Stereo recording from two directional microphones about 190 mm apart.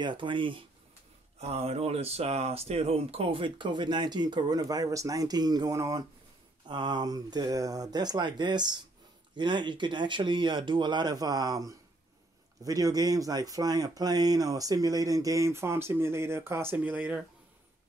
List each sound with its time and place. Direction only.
0.0 s speech: 25° right (ahead or behind); by 17.2 s 10° right (ahead or behind)